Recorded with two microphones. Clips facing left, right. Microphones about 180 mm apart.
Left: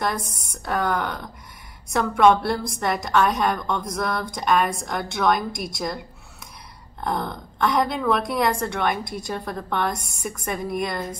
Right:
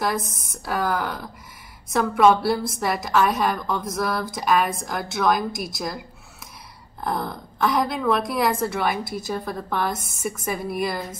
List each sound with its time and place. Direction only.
0.0 s a woman's voice: centre (ahead or behind)